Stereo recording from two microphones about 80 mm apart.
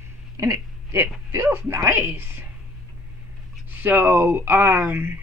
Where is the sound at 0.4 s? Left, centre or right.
Right.